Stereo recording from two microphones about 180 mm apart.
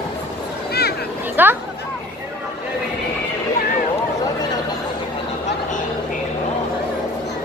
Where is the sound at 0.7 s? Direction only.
60° left (ahead or behind).